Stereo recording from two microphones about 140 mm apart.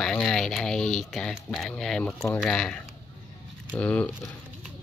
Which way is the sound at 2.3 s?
5° left (ahead or behind).